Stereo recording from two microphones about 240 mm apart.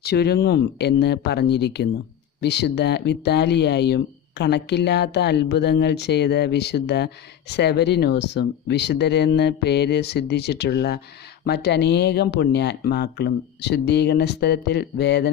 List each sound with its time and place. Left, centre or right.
0.0 s speech: left